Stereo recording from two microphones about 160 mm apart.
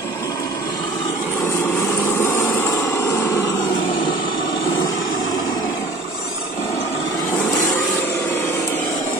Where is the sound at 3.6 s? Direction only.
30° left (ahead or behind).